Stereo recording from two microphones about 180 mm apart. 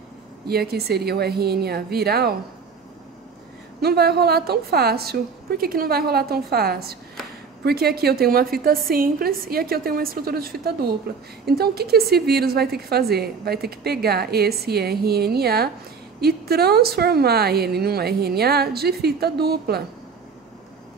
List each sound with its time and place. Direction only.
0.5 s a woman's voice: 60° right (ahead or behind)
3.8 s a woman's voice: 60° right (ahead or behind)